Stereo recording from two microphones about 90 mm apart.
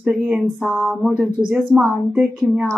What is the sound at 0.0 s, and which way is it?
Speech, 20° right (ahead or behind).